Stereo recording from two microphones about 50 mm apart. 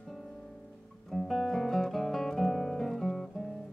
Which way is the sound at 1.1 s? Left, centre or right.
Centre.